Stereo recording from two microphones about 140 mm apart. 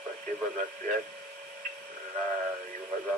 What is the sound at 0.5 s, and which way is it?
Speech, 65° right (ahead or behind).